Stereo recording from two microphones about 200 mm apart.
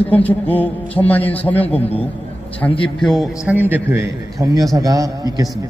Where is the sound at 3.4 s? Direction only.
10° right (ahead or behind).